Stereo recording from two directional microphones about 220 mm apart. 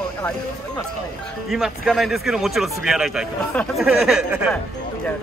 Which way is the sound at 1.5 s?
Centre (ahead or behind).